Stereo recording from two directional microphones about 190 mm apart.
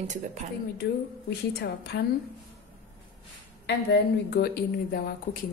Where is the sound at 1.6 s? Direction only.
65° left (ahead or behind).